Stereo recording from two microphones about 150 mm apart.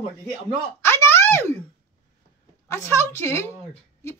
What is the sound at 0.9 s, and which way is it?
Speech, 15° left (ahead or behind).